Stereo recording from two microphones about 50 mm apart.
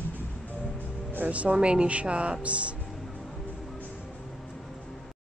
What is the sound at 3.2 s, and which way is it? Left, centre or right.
Music, centre.